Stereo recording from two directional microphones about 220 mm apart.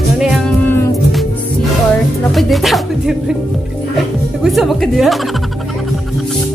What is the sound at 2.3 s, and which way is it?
Speech, centre (ahead or behind).